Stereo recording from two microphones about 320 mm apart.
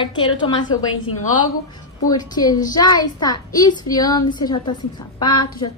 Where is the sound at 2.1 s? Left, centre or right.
Centre.